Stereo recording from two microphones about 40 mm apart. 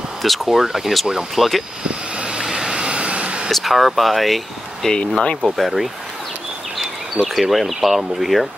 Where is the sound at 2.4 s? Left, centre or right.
Centre.